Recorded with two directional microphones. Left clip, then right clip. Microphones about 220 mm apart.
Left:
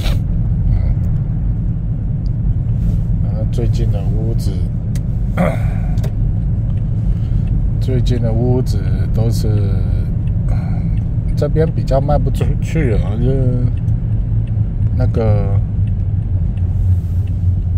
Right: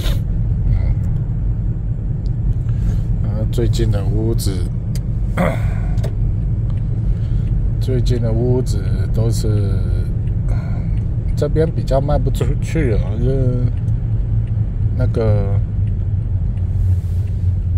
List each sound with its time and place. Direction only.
3.5 s speech: 10° right (ahead or behind)
5.3 s a sound: centre (ahead or behind)
7.9 s speech: centre (ahead or behind)
11.3 s speech: centre (ahead or behind)
15.0 s speech: centre (ahead or behind)